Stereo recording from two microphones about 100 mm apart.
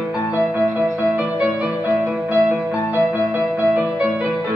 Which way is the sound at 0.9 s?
20° right (ahead or behind).